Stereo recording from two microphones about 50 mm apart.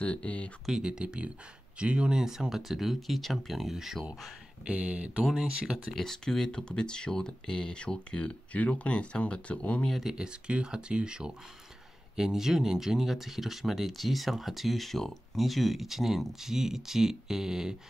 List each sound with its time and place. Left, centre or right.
0.0 s speech: left
0.7 s speech: centre
4.6 s speech: right
5.2 s speech: centre
5.9 s speech: centre; by 9.8 s left
10.0 s speech: centre